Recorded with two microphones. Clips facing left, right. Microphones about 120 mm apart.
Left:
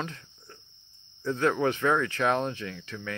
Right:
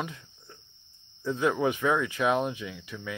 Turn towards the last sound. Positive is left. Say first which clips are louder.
# left 1 dB
turn(degrees=-10)  # may be behind; listen again after turning